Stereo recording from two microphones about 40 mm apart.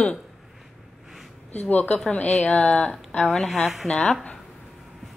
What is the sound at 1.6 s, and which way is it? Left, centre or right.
Speech, left.